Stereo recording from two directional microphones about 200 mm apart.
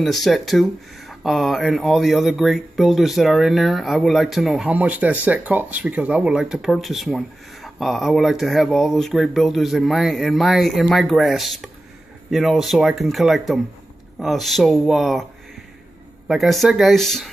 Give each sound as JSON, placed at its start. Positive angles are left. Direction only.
{"t": 0.0, "sound": "speech", "side_deg": 0}
{"t": 16.3, "sound": "speech", "side_deg": 0}